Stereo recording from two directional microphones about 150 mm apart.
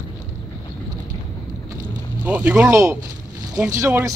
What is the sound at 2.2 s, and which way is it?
Speech, 10° right (ahead or behind).